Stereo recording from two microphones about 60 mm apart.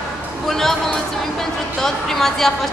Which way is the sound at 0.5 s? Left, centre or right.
Centre.